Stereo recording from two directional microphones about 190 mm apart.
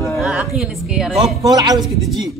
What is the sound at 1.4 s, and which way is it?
Speech, 20° right (ahead or behind).